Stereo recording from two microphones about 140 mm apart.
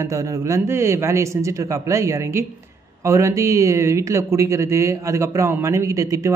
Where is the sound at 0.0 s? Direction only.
20° right (ahead or behind).